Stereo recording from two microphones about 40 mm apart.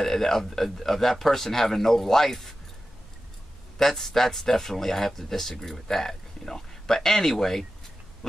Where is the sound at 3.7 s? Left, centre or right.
Centre.